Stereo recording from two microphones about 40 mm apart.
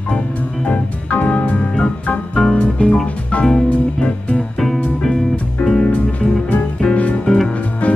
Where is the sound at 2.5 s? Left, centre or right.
Left.